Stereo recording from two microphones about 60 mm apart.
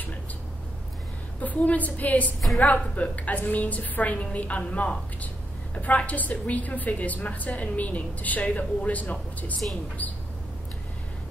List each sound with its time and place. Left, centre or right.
1.4 s a woman's voice: left